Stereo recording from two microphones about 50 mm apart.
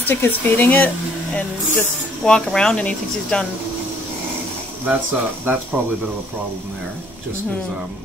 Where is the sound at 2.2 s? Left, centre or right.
Centre.